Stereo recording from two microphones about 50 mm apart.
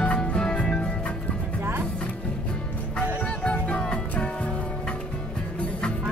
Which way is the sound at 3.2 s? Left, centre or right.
Left.